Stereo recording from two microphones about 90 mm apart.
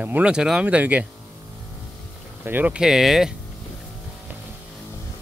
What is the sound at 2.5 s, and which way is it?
Speech, 20° right (ahead or behind).